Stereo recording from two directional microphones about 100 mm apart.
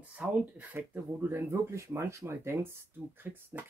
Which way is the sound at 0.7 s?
25° right (ahead or behind).